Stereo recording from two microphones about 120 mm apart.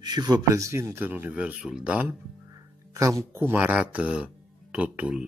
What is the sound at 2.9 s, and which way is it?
Speech, 25° right (ahead or behind).